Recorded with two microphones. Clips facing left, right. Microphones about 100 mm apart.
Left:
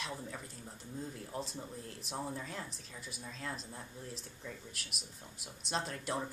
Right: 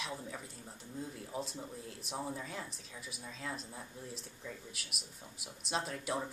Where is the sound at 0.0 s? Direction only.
Centre (ahead or behind).